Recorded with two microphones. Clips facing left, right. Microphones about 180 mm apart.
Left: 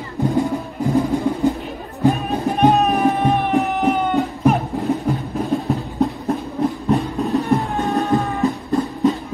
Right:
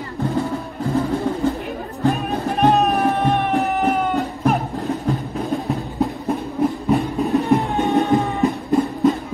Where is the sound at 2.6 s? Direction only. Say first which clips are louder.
Left 1 dB; centre (ahead or behind).